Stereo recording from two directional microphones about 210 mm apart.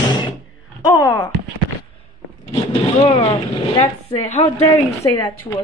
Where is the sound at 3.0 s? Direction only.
25° left (ahead or behind).